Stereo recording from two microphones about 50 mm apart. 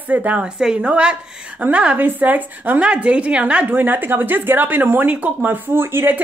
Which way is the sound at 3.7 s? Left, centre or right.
Right.